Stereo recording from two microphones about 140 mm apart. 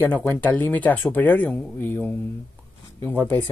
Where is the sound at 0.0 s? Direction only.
15° left (ahead or behind).